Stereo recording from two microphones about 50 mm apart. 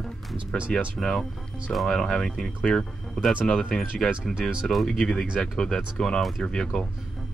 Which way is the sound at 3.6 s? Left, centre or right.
Centre.